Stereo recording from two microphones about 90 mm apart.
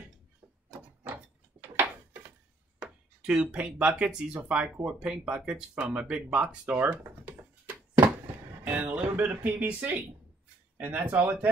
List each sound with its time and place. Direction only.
0.7 s wood: 20° right (ahead or behind)
2.8 s speech: 10° right (ahead or behind)
8.6 s speech: 20° right (ahead or behind)